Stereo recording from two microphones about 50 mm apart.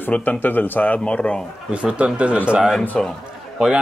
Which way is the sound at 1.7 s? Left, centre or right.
Right.